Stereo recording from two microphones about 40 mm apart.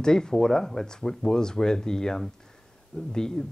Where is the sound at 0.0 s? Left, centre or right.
Centre.